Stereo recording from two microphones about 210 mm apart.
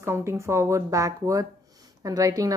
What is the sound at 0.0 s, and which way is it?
Speech, 10° right (ahead or behind).